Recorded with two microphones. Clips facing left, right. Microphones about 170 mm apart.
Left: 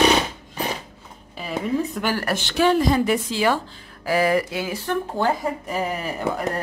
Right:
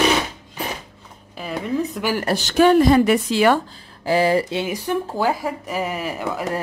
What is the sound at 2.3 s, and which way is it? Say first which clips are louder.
A woman's voice: right 6 dB; 45° right (ahead or behind).